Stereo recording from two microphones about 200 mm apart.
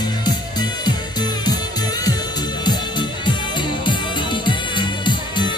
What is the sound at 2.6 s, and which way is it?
Music, 20° left (ahead or behind).